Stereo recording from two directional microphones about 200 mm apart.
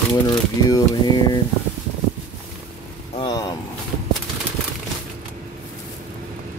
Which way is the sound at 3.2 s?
20° left (ahead or behind).